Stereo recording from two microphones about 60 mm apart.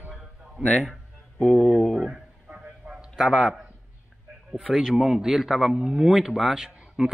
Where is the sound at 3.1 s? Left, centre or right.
Centre.